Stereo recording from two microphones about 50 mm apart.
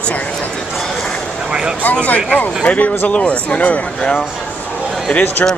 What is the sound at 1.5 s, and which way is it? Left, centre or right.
Vehicle, centre.